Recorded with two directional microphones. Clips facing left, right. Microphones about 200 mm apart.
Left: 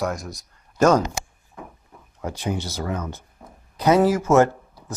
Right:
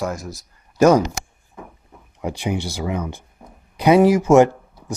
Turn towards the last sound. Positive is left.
turn(degrees=-15)  # may be behind; listen again after turning